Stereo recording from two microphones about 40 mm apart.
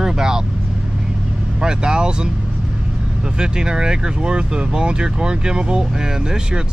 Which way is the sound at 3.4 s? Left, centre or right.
Centre.